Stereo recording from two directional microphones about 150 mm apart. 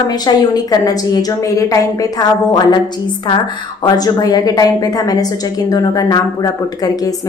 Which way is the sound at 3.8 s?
25° left (ahead or behind).